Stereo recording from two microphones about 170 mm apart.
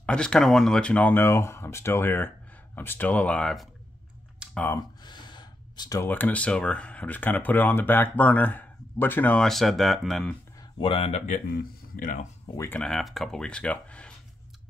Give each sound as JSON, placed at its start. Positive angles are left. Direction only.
{"t": 0.0, "sound": "speech", "side_deg": 5}
{"t": 4.4, "sound": "computer keyboard", "side_deg": -5}
{"t": 5.0, "sound": "speech", "side_deg": 25}
{"t": 10.6, "sound": "speech", "side_deg": 30}
{"t": 12.5, "sound": "speech", "side_deg": 10}